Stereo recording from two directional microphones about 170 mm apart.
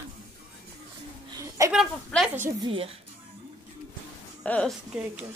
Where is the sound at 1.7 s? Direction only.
Centre (ahead or behind).